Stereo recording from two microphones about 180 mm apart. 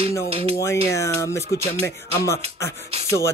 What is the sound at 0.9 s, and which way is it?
Music, 15° left (ahead or behind).